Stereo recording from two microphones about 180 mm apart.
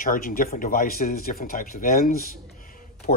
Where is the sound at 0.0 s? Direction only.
50° left (ahead or behind).